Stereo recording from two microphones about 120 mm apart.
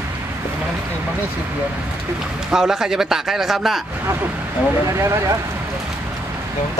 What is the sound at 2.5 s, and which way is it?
A man's voice, 5° right (ahead or behind).